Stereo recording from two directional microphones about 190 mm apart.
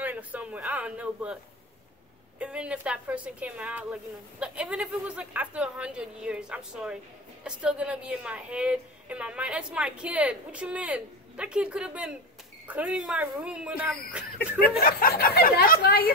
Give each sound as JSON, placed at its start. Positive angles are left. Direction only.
{"t": 0.0, "sound": "a woman's voice", "side_deg": -10}
{"t": 14.8, "sound": "speech", "side_deg": 50}